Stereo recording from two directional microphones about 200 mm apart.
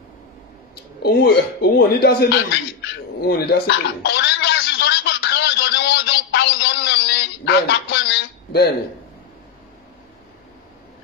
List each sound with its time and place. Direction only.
1.0 s a man's voice: 55° left (ahead or behind)
3.6 s gargling: 55° left (ahead or behind)